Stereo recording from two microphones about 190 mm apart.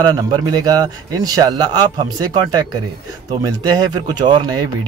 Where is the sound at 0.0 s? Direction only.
20° right (ahead or behind).